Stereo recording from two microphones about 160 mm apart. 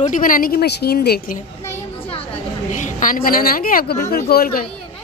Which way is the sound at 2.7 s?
55° left (ahead or behind).